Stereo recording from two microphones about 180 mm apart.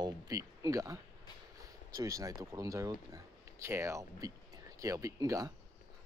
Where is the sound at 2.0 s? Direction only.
20° right (ahead or behind).